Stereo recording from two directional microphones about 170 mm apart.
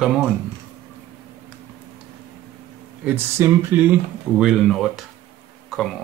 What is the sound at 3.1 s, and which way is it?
Speech, 15° right (ahead or behind).